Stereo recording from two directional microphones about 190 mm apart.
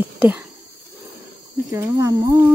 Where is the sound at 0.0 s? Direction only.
10° right (ahead or behind).